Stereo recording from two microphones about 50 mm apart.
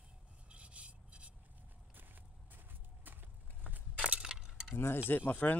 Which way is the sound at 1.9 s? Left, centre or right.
Right.